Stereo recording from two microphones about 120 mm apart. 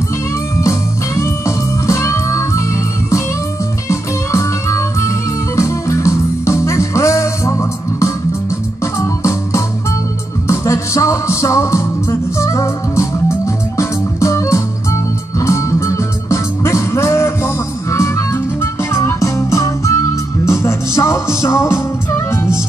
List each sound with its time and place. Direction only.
0.6 s music: 25° left (ahead or behind)
3.9 s music: 25° left (ahead or behind)
8.9 s organ: 25° left (ahead or behind)
10.4 s music: 25° left (ahead or behind)